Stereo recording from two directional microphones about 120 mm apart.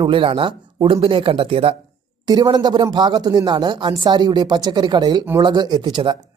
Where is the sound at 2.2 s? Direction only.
35° right (ahead or behind).